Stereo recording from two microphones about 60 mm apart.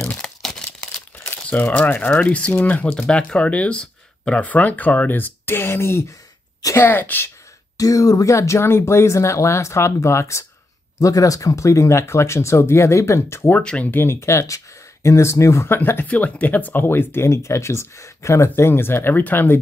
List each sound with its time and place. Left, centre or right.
0.2 s crumpling: centre
1.1 s speech: left
2.9 s speech: centre; by 6.1 s left
6.9 s speech: left
7.7 s speech: left
11.0 s speech: left
13.6 s speech: centre
13.8 s speech: left
14.2 s speech: left
15.7 s speech: left
16.1 s speech: left
18.6 s speech: left